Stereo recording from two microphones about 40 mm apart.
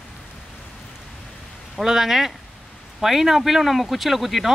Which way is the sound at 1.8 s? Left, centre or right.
Centre.